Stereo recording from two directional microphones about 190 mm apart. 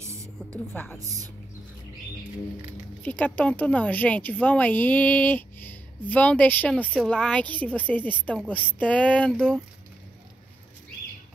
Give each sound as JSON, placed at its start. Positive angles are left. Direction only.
{"t": 0.0, "sound": "a sound", "side_deg": -15}
{"t": 0.5, "sound": "speech", "side_deg": 10}
{"t": 3.0, "sound": "speech", "side_deg": 10}